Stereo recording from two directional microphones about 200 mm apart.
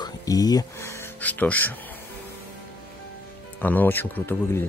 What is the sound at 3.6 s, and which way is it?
Speech, 10° left (ahead or behind).